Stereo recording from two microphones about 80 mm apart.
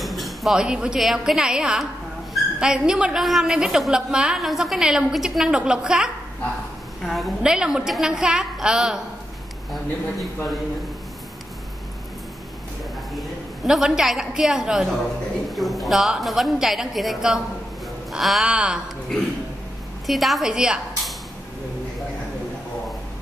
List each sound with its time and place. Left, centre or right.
0.0 s a sound: centre
0.6 s a woman's voice: centre
13.1 s a woman's voice: centre
20.1 s a woman's voice: centre